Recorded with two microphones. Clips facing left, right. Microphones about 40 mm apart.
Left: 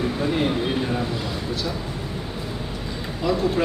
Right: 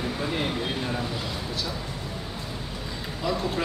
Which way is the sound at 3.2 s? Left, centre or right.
Centre.